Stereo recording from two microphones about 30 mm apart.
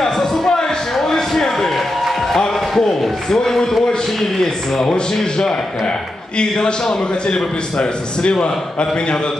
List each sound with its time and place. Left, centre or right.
0.0 s a sound: centre
2.7 s speech: centre
6.3 s a man's voice: left